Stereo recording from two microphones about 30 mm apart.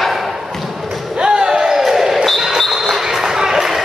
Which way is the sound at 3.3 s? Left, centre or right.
Centre.